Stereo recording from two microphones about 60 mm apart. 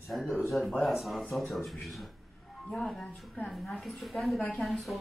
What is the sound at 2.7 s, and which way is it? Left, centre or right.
Speech, centre.